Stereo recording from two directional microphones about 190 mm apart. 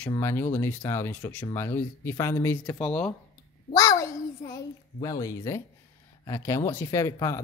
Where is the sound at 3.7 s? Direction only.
15° left (ahead or behind).